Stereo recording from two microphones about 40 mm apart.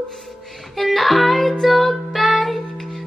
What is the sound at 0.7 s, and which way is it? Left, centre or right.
Music, centre.